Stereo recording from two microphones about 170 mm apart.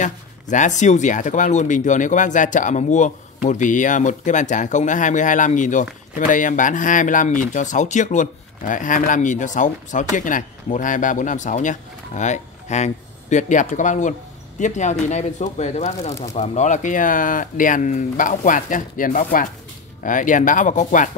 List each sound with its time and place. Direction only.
0.0 s speech: 45° left (ahead or behind)